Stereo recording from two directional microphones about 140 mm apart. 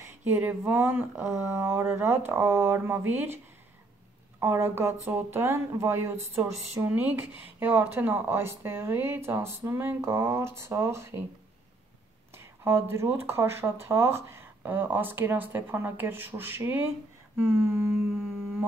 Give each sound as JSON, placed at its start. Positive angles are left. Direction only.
{"t": 0.0, "sound": "speech", "side_deg": -15}
{"t": 4.4, "sound": "speech", "side_deg": -15}
{"t": 12.6, "sound": "speech", "side_deg": -20}